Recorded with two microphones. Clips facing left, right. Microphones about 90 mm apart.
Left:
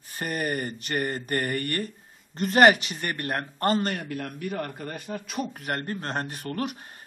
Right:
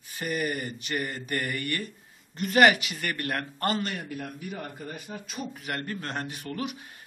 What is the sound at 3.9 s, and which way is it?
A man's voice, 65° left (ahead or behind).